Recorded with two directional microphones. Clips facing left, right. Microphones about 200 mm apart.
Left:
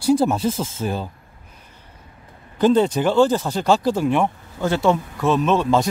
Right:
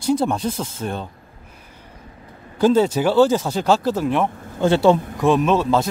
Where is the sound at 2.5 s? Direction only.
5° right (ahead or behind).